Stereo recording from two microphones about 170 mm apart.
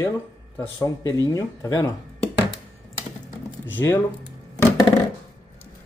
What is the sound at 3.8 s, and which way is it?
Speech, 15° left (ahead or behind).